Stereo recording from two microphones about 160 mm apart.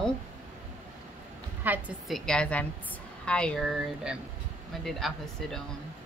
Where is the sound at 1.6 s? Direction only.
10° right (ahead or behind).